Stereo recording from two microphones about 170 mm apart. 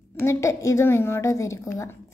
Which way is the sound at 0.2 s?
15° left (ahead or behind).